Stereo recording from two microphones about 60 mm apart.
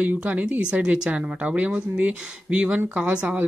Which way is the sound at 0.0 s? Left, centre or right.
Right.